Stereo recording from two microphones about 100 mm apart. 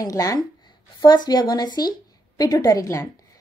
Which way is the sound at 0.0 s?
35° left (ahead or behind).